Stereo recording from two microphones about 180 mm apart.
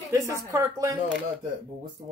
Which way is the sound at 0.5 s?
15° right (ahead or behind).